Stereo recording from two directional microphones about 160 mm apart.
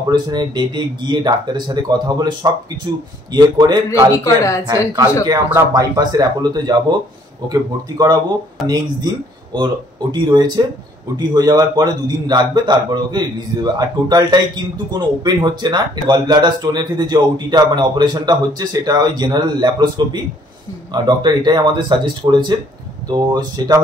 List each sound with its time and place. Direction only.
0.1 s speech: 25° right (ahead or behind)
4.4 s a woman's voice: 20° left (ahead or behind)
4.9 s speech: 20° right (ahead or behind)
8.6 s speech: 25° right (ahead or behind)